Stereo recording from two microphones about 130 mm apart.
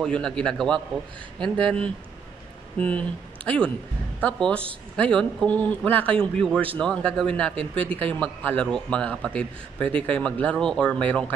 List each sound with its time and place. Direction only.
0.0 s a man's voice: 5° left (ahead or behind)